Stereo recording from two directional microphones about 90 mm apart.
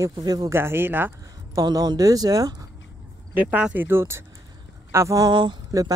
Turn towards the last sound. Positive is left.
turn(degrees=-50)  # may be behind; listen again after turning